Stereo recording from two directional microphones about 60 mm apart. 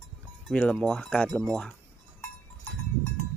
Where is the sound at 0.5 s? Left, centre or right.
Centre.